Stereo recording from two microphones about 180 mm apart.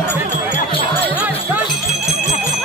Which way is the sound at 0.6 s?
30° left (ahead or behind).